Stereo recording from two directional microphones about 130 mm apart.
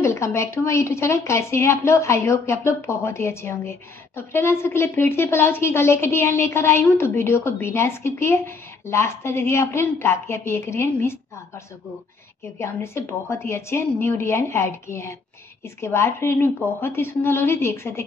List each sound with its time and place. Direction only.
0.0 s a woman's voice: 20° left (ahead or behind)
12.5 s a woman's voice: 20° left (ahead or behind)